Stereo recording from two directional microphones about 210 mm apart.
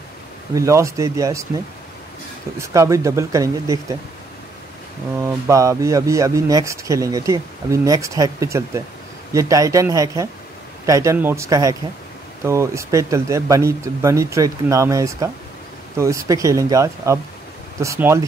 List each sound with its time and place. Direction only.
0.6 s speech: 15° right (ahead or behind)
2.6 s speech: 15° right (ahead or behind)
5.2 s speech: 15° right (ahead or behind)